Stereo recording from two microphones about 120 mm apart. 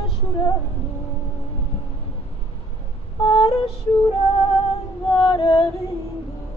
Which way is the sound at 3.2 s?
50° left (ahead or behind).